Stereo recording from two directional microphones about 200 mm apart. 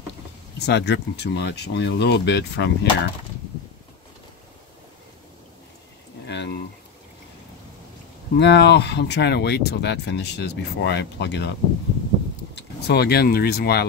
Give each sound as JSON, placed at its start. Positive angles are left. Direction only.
{"t": 0.6, "sound": "speech", "side_deg": 60}
{"t": 6.2, "sound": "a sound", "side_deg": 60}
{"t": 8.4, "sound": "speech", "side_deg": 60}
{"t": 12.5, "sound": "speech", "side_deg": 55}